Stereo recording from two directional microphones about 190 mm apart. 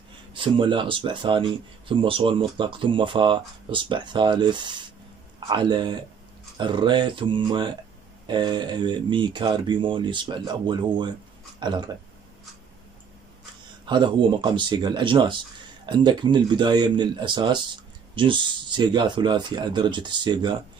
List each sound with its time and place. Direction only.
0.3 s speech: 25° right (ahead or behind)
13.8 s speech: 25° right (ahead or behind)